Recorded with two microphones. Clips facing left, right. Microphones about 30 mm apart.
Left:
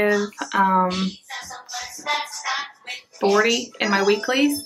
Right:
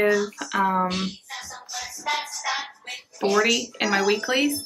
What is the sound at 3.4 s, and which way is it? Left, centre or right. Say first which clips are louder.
Speech: left 2 dB; centre.